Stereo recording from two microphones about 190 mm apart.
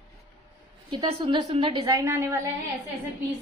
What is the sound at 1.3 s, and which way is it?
A woman's voice, 30° right (ahead or behind).